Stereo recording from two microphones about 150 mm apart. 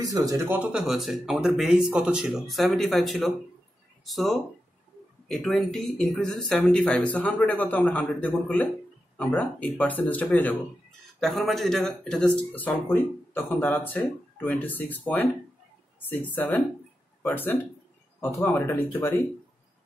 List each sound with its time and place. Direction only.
0.0 s speech: 25° right (ahead or behind)
0.7 s speech: 5° right (ahead or behind); by 19.1 s 15° left (ahead or behind)